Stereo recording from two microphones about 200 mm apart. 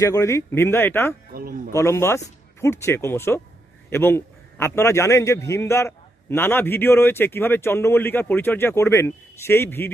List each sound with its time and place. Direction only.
0.0 s a man's voice: 15° left (ahead or behind)
1.3 s speech: 45° right (ahead or behind)
1.7 s a man's voice: 15° left (ahead or behind)